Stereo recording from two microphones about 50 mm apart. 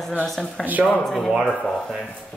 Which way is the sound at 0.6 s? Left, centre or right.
Right.